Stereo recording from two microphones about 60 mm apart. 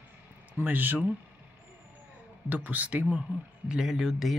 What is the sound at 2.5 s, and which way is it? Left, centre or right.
Speech, right.